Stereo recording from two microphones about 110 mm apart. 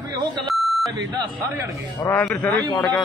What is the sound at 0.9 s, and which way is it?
Speech, 40° right (ahead or behind).